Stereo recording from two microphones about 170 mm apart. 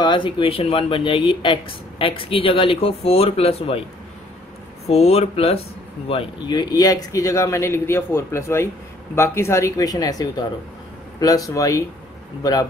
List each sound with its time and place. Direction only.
0.0 s speech: 30° left (ahead or behind)
4.8 s speech: 40° left (ahead or behind); by 11.8 s 20° left (ahead or behind)